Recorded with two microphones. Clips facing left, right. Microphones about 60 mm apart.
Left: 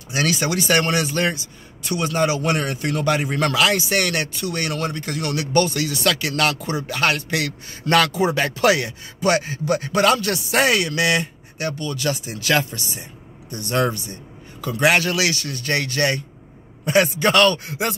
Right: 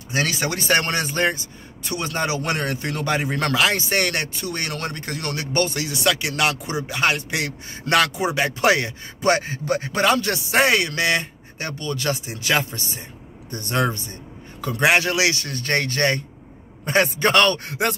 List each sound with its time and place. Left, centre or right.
0.1 s a man's voice: right
12.3 s speech: right
13.5 s a man's voice: right